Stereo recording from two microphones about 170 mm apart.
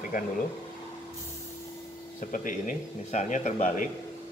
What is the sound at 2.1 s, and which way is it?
Speech, 50° left (ahead or behind).